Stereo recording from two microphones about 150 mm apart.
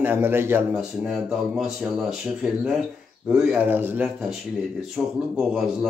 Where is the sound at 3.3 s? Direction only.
5° right (ahead or behind).